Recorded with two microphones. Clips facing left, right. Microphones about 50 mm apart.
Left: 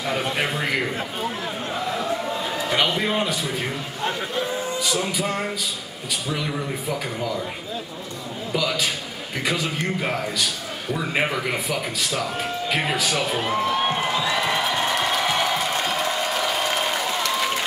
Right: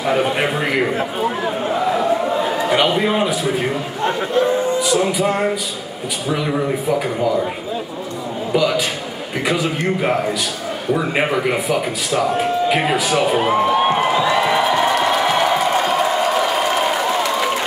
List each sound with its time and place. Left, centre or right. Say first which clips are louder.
0.0 s a man's voice: right 7 dB; centre
8.5 s speech: right 6 dB; centre
10.9 s a sound: right 6 dB; centre